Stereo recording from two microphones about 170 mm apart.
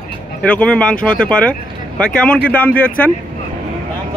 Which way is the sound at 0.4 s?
5° left (ahead or behind).